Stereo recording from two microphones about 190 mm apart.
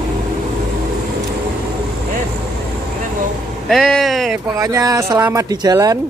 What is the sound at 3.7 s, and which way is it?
Vehicle, centre (ahead or behind).